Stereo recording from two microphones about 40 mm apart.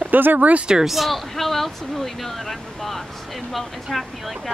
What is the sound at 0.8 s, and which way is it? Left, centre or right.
Speech, centre.